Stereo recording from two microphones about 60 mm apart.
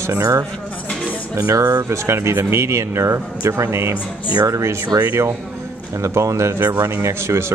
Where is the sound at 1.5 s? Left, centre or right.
Right.